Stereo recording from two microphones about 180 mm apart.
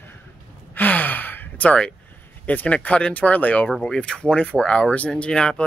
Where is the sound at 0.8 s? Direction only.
10° left (ahead or behind).